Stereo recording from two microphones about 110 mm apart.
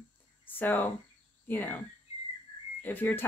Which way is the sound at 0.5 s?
20° left (ahead or behind).